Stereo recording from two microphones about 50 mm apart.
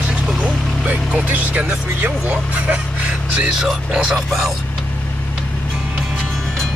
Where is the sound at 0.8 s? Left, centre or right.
Right.